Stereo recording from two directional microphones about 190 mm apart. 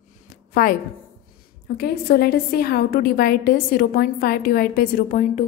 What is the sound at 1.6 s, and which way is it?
A woman's voice, 55° left (ahead or behind).